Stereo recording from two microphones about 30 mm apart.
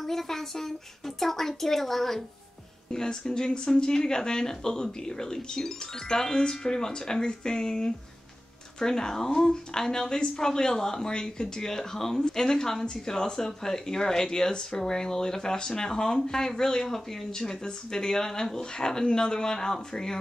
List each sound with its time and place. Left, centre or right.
0.0 s speech: centre
2.9 s speech: left